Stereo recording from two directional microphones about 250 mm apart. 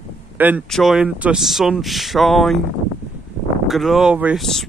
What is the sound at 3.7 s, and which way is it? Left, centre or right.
Speech, centre.